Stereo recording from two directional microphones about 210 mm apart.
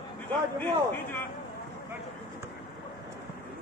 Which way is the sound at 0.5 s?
10° left (ahead or behind).